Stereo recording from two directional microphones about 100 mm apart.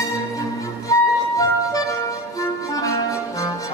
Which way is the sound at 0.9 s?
35° left (ahead or behind).